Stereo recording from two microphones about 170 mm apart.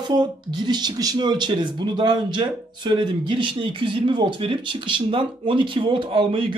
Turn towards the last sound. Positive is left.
turn(degrees=-30)  # may be behind; listen again after turning